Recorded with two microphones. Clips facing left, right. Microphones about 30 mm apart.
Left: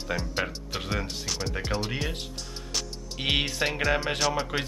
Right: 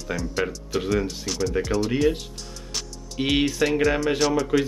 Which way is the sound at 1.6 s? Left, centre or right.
Left.